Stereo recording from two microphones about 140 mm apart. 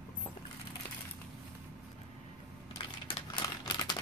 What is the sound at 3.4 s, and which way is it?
Crumpling, 30° left (ahead or behind).